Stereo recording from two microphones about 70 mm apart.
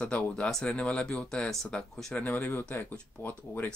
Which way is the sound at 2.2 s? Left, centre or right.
Left.